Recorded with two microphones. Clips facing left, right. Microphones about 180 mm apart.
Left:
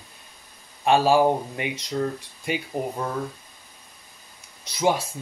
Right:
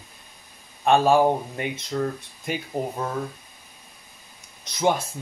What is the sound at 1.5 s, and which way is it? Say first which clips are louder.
Speech: even; 45° right (ahead or behind).